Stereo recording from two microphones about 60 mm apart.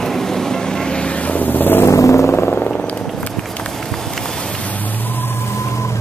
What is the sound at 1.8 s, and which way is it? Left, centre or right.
Vehicle, left.